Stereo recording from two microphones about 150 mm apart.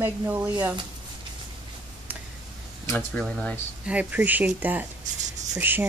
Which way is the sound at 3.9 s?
10° right (ahead or behind).